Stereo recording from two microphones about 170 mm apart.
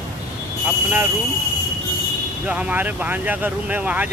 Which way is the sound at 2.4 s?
5° right (ahead or behind).